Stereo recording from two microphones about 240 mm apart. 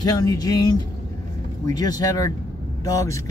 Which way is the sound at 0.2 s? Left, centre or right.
Centre.